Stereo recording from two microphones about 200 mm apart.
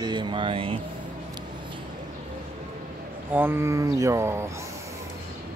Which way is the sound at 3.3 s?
10° right (ahead or behind).